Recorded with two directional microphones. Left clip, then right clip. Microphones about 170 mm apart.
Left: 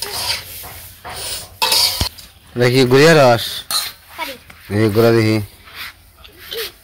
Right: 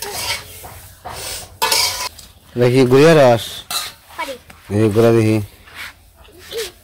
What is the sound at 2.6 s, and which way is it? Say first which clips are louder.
Speech: even; 5° right (ahead or behind).